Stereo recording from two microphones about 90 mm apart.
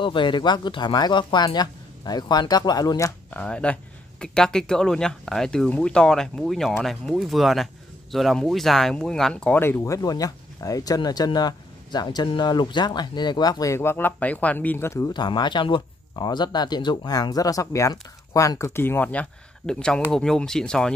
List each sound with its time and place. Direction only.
0.0 s speech: 65° left (ahead or behind); by 3.1 s 45° left (ahead or behind)
3.3 s speech: 15° left (ahead or behind)
9.6 s speech: 30° left (ahead or behind); by 13.7 s 50° left (ahead or behind)
13.7 s speech: 25° left (ahead or behind)
14.9 s speech: 35° left (ahead or behind)
15.1 s speech: 55° left (ahead or behind); by 19.2 s 25° left (ahead or behind)
19.6 s speech: 10° left (ahead or behind)